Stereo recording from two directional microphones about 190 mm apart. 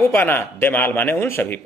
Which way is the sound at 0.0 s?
10° left (ahead or behind).